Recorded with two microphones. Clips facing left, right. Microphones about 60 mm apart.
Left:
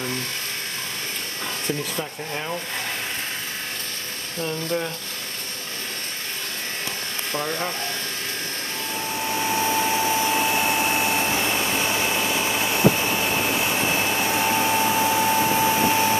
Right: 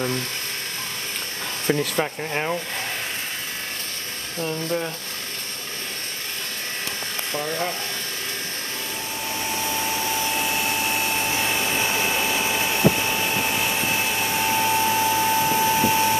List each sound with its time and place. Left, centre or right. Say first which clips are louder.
1.7 s speech: right 8 dB; right
4.4 s speech: even; centre
9.3 s vacuum cleaner: left 5 dB; left
11.1 s vacuum cleaner: left 2 dB; centre
12.1 s a sound: even; centre
12.7 s vacuum cleaner: left 2 dB; centre